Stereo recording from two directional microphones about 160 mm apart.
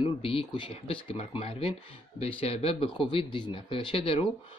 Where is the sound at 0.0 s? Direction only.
35° left (ahead or behind).